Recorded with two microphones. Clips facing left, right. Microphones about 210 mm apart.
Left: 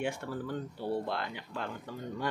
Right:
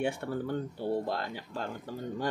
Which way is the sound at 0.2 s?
55° right (ahead or behind).